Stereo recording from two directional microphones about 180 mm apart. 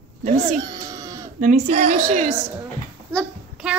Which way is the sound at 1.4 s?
40° right (ahead or behind).